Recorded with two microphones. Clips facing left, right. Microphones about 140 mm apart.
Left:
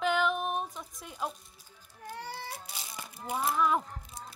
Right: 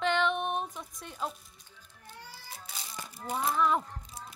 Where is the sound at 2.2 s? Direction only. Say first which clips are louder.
Left 7 dB; 70° left (ahead or behind).